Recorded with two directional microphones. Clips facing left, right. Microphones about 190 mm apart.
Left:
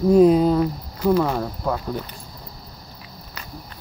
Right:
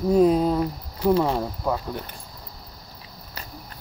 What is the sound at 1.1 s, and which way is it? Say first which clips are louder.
Speech: left 1 dB; 25° right (ahead or behind).